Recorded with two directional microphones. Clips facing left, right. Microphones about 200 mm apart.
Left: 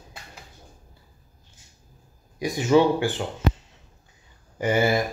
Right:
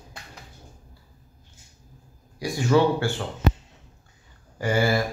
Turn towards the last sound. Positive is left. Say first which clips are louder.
# left 1 dB
turn(degrees=20)  # may be behind; listen again after turning